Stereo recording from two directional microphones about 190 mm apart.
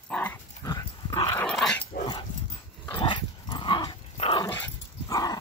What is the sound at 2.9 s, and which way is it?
Dog, 25° left (ahead or behind).